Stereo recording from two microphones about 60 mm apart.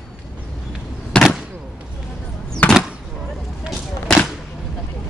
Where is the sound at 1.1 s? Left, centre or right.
Centre.